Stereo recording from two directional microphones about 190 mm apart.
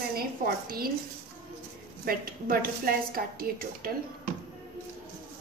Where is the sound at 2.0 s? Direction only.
50° right (ahead or behind).